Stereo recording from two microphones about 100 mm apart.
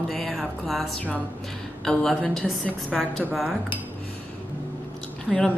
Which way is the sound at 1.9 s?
5° left (ahead or behind).